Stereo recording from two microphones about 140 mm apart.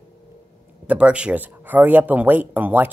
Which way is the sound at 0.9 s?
10° right (ahead or behind).